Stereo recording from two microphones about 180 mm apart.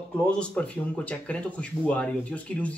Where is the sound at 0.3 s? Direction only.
5° left (ahead or behind).